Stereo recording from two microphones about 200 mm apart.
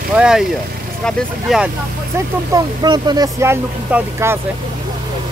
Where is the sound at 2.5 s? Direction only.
20° right (ahead or behind).